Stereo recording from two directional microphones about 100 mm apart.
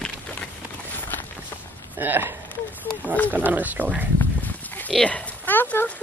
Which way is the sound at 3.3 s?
15° right (ahead or behind).